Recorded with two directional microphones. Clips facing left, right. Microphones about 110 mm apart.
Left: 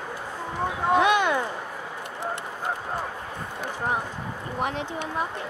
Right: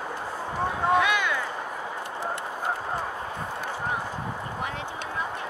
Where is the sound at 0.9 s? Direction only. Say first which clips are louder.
Left 6 dB; 20° left (ahead or behind).